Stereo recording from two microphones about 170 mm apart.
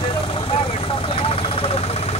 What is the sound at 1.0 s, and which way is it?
Vehicle, 35° left (ahead or behind).